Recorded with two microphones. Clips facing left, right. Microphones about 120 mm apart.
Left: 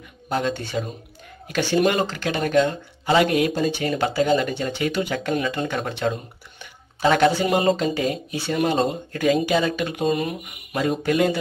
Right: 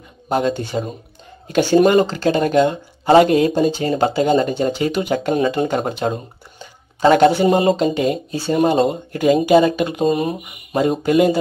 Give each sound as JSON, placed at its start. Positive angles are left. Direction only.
{"t": 0.4, "sound": "speech", "side_deg": -40}
{"t": 7.0, "sound": "speech", "side_deg": -40}
{"t": 7.2, "sound": "speech", "side_deg": -25}
{"t": 9.4, "sound": "speech", "side_deg": -45}
{"t": 9.9, "sound": "speech", "side_deg": -30}